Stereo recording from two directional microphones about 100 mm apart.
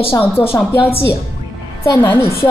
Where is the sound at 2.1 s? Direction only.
25° left (ahead or behind).